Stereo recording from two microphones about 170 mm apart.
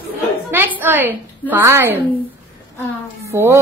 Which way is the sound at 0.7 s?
10° right (ahead or behind).